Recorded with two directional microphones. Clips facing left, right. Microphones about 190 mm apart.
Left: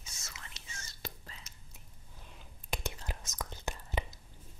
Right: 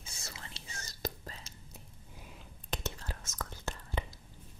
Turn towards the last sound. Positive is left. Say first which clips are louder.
# left 1 dB
turn(degrees=20)  # may be behind; listen again after turning